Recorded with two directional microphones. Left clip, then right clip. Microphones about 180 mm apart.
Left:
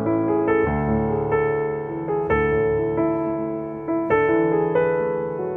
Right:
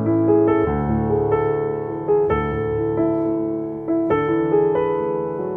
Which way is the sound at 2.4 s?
30° left (ahead or behind).